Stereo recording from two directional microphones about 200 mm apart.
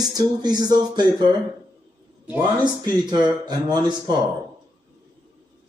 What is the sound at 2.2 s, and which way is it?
Speech, 10° right (ahead or behind).